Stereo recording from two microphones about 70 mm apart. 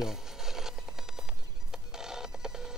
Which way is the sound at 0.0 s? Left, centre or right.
Centre.